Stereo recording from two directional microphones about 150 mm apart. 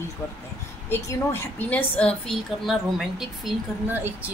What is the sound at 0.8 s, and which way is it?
A woman's voice, 15° left (ahead or behind).